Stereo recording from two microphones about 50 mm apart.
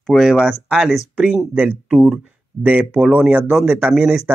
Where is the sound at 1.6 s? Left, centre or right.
Right.